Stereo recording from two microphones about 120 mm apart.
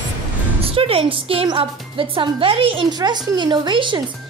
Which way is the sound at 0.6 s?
50° right (ahead or behind).